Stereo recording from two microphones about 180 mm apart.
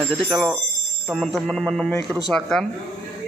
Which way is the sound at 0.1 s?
Centre (ahead or behind).